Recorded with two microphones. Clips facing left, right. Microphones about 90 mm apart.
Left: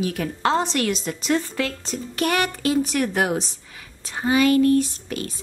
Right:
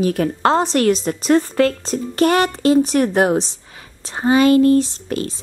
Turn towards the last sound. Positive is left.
turn(degrees=-35)  # may be behind; listen again after turning